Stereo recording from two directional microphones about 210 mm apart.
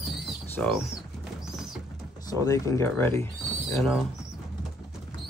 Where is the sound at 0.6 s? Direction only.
5° left (ahead or behind).